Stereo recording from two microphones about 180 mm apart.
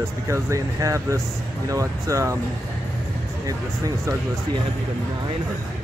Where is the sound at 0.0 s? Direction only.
15° right (ahead or behind).